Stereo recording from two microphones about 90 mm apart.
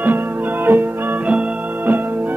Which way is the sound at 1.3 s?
15° right (ahead or behind).